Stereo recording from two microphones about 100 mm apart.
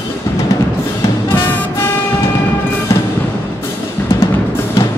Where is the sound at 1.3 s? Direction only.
20° left (ahead or behind).